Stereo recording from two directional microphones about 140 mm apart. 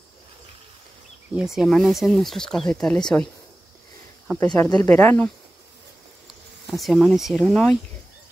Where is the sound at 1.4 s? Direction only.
5° right (ahead or behind).